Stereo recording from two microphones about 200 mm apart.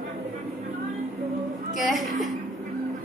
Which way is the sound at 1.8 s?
Centre (ahead or behind).